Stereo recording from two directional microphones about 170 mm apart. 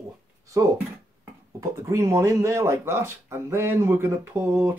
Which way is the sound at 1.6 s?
15° right (ahead or behind).